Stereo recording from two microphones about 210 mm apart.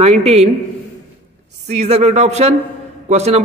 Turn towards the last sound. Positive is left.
turn(degrees=-30)  # may be behind; listen again after turning